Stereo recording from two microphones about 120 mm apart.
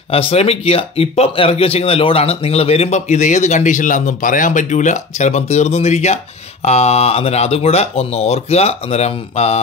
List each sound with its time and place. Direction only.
0.1 s speech: 55° left (ahead or behind)